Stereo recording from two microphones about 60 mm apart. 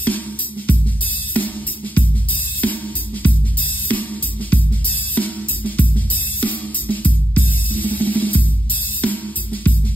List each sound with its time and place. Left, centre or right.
1.3 s music: left